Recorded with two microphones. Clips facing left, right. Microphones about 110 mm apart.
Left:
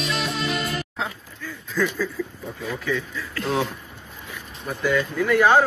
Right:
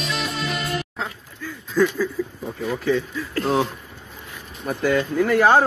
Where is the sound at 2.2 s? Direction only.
15° right (ahead or behind).